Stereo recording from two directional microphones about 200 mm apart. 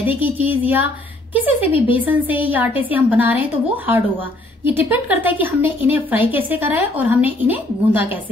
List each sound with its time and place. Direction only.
0.1 s a woman's voice: 10° right (ahead or behind)
1.6 s speech: 25° left (ahead or behind)
2.0 s a woman's voice: 10° right (ahead or behind)